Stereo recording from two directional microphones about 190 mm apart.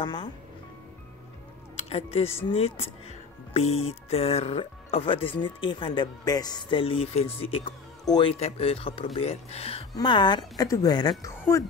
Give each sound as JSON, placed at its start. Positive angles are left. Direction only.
{"t": 0.0, "sound": "speech", "side_deg": 25}
{"t": 1.8, "sound": "speech", "side_deg": 35}